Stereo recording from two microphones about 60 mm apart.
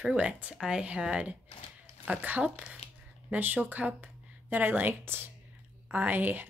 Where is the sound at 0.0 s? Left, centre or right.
Centre.